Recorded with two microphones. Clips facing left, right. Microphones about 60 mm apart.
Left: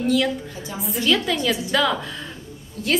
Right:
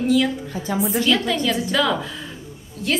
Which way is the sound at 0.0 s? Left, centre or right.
Centre.